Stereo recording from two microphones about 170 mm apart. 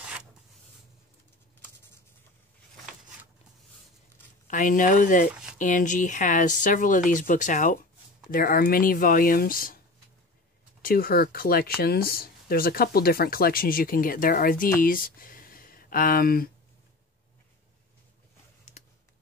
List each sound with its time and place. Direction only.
4.5 s speech: 50° left (ahead or behind)
8.3 s speech: 60° left (ahead or behind)
10.8 s speech: 60° left (ahead or behind)
18.8 s a sound: 45° left (ahead or behind)